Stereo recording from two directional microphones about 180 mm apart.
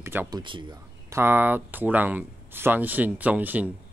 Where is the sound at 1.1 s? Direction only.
10° right (ahead or behind).